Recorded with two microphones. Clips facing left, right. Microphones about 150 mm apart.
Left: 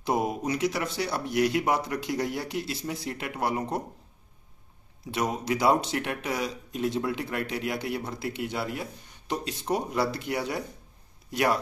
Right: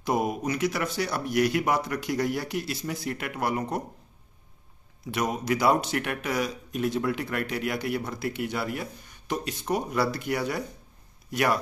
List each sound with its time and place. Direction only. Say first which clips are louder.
0.3 s speech: even; 25° left (ahead or behind)
5.4 s speech: even; 25° left (ahead or behind)